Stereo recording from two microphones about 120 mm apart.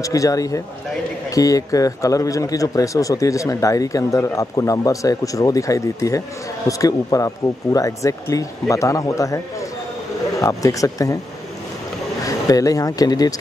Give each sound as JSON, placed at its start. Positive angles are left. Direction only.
{"t": 0.0, "sound": "speech", "side_deg": 30}
{"t": 10.4, "sound": "speech", "side_deg": 25}
{"t": 12.2, "sound": "speech", "side_deg": 30}